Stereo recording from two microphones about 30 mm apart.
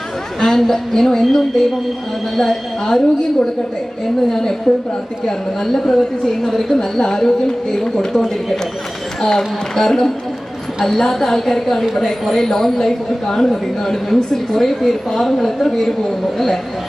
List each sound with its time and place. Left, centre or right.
0.4 s a woman's voice: centre
9.2 s a woman's voice: centre